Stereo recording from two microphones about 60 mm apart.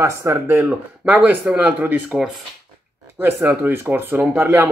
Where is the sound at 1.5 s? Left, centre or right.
Right.